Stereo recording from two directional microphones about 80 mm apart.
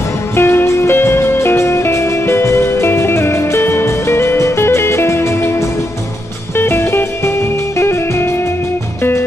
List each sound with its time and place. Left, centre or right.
0.4 s music: left
6.5 s music: left